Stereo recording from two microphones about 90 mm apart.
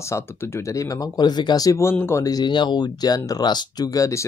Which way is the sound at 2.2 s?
50° left (ahead or behind).